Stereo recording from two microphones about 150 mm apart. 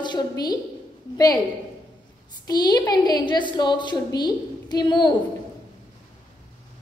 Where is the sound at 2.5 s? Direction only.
25° left (ahead or behind).